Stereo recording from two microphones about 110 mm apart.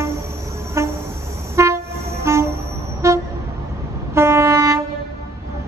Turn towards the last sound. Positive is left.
turn(degrees=-25)  # may be behind; listen again after turning